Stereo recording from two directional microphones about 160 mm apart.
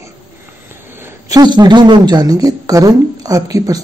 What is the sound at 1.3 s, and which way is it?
Speech, 25° right (ahead or behind).